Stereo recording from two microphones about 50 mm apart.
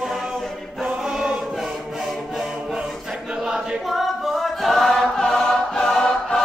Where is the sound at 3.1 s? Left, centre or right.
Centre.